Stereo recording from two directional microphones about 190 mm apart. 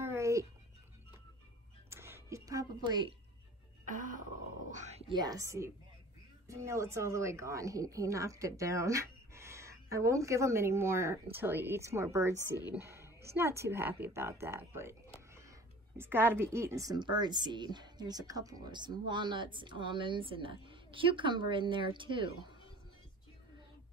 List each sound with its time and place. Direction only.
0.0 s a sound: 15° right (ahead or behind)
1.9 s music: 15° right (ahead or behind)
3.8 s music: 45° right (ahead or behind)
4.6 s a sound: 40° right (ahead or behind)
5.1 s a woman's voice: 20° right (ahead or behind)
16.0 s speech: 10° right (ahead or behind); by 22.5 s 25° right (ahead or behind)